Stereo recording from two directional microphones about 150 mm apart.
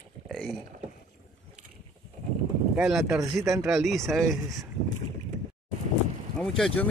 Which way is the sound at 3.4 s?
20° right (ahead or behind).